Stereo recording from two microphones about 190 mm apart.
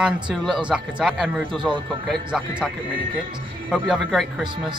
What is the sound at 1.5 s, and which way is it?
Speech, 25° right (ahead or behind).